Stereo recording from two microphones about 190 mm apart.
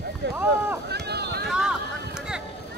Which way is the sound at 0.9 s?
60° right (ahead or behind).